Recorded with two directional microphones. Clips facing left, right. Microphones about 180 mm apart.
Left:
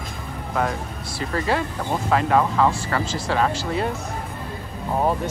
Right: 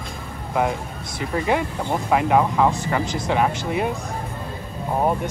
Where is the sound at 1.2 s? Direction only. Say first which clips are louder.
Right 2 dB; 15° right (ahead or behind).